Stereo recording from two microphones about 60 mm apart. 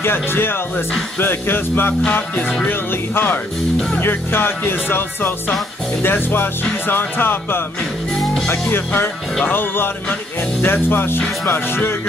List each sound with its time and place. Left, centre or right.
0.0 s speech: left
4.0 s speech: left